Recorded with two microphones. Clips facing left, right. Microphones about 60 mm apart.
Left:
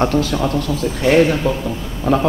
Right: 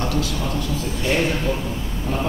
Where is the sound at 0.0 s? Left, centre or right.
Left.